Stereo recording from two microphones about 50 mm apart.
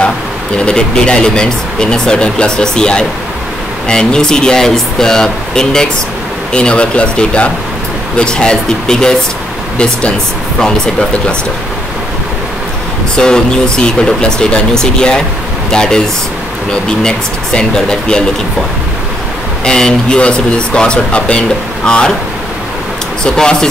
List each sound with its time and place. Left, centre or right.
0.7 s speech: centre
13.1 s speech: centre
19.6 s speech: centre
23.2 s speech: centre